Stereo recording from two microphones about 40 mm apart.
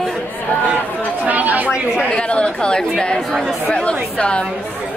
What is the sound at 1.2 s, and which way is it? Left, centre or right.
Chatter, right.